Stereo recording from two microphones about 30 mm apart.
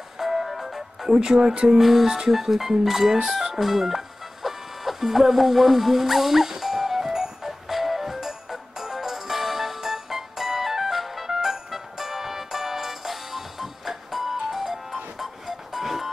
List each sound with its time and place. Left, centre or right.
0.2 s music: centre
1.0 s speech: right
1.8 s speech: centre
2.0 s speech: right
2.3 s speech: centre
3.5 s music: centre